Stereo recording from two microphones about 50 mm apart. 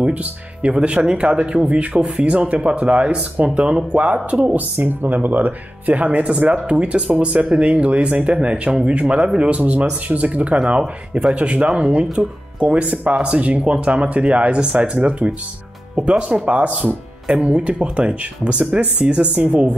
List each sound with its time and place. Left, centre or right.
0.0 s speech: right
4.6 s speech: right